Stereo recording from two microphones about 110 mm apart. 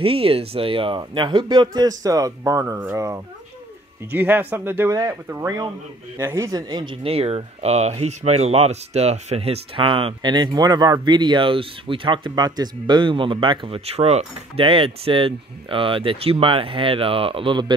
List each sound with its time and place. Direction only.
0.0 s speech: 60° right (ahead or behind); by 2.6 s 30° right (ahead or behind)
2.6 s speech: 20° right (ahead or behind)
4.1 s speech: 15° right (ahead or behind)
6.7 s speech: 45° right (ahead or behind)